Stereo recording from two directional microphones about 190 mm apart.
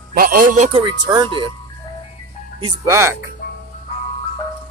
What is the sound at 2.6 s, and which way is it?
Speech, 15° right (ahead or behind).